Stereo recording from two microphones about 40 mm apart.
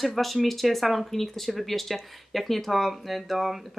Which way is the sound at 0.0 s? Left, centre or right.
Centre.